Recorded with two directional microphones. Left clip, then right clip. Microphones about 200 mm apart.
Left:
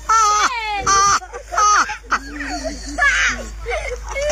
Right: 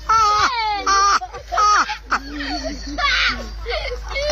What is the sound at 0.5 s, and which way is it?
Baby cry, 50° left (ahead or behind).